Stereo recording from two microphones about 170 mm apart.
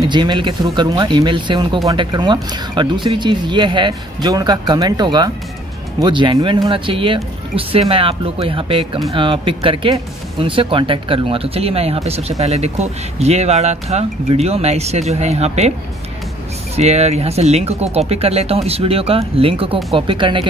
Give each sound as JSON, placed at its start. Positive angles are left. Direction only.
{"t": 0.1, "sound": "speech", "side_deg": -25}
{"t": 16.7, "sound": "speech", "side_deg": -40}